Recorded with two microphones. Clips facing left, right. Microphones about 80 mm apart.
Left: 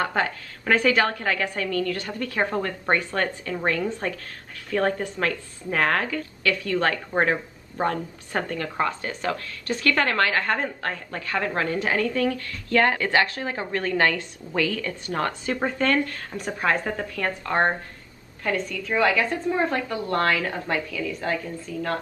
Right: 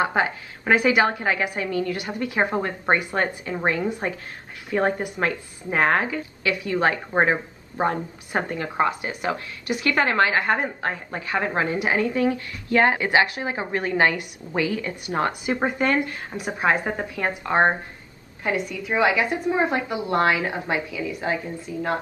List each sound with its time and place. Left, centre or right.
0.0 s a woman's voice: centre